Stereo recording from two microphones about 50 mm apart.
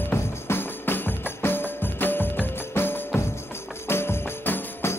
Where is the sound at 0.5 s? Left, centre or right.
Left.